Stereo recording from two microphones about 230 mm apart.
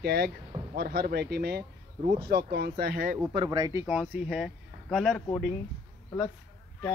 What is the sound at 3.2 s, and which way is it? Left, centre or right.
Speech, centre.